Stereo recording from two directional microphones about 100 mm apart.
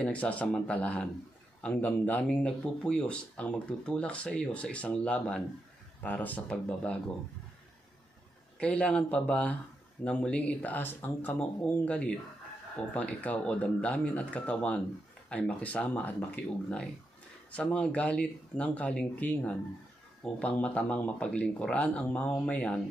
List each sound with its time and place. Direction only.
0.0 s speech: 15° left (ahead or behind)
8.5 s speech: 10° left (ahead or behind)